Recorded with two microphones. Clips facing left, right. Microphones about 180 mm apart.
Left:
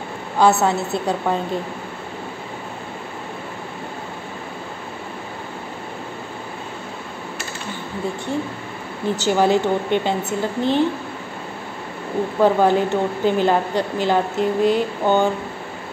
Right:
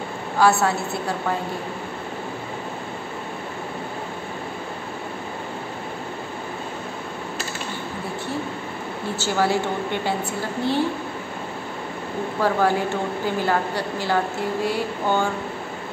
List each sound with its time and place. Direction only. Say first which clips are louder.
0.4 s a woman's voice: left 3 dB; 20° left (ahead or behind)
9.1 s a woman's voice: left 5 dB; 20° left (ahead or behind)
12.4 s a woman's voice: left 5 dB; 20° left (ahead or behind)